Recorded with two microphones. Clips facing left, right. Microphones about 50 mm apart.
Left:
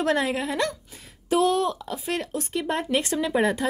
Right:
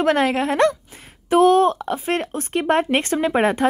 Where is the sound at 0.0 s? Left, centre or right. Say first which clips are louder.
Right 6 dB; right.